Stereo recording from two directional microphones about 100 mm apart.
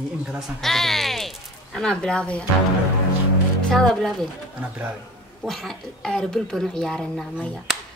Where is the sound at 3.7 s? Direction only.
5° left (ahead or behind).